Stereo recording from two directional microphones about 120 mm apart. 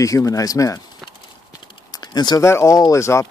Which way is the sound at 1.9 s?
35° left (ahead or behind).